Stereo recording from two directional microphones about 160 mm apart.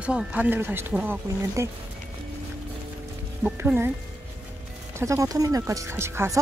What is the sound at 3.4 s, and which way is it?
Speech, 10° right (ahead or behind).